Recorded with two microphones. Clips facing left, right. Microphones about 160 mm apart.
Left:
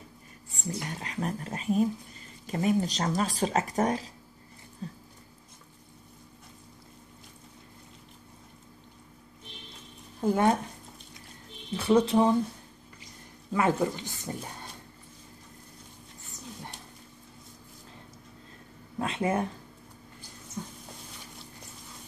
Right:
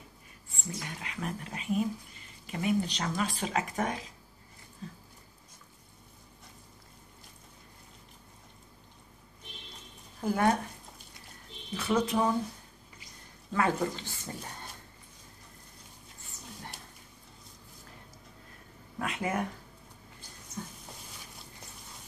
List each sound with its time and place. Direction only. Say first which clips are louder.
0.7 s speech: left 5 dB; 35° left (ahead or behind)
4.8 s a sound: left 4 dB; 35° left (ahead or behind)
10.2 s a woman's voice: left 3 dB; 20° left (ahead or behind)
11.7 s a woman's voice: left 6 dB; 30° left (ahead or behind)
13.5 s speech: left 3 dB; 20° left (ahead or behind)
18.9 s speech: left 4 dB; 30° left (ahead or behind)